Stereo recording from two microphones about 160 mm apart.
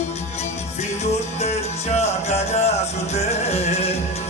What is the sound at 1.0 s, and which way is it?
Music, 40° left (ahead or behind).